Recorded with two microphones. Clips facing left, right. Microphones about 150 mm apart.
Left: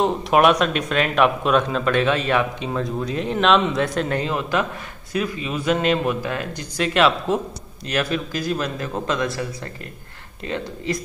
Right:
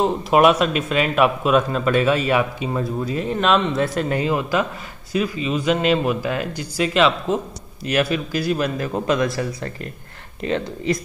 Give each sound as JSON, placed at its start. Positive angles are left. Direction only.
{"t": 0.0, "sound": "a man's voice", "side_deg": 0}
{"t": 10.4, "sound": "speech", "side_deg": -20}